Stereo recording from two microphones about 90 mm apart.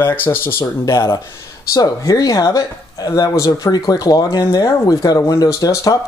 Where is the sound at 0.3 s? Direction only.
25° left (ahead or behind).